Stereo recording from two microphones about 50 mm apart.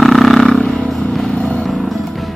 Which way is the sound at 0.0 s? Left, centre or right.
Centre.